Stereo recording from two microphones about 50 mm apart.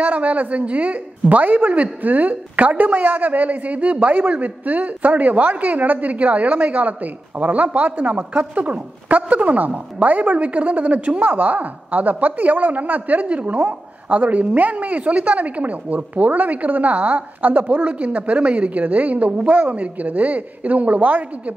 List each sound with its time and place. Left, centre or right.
0.0 s a woman's voice: right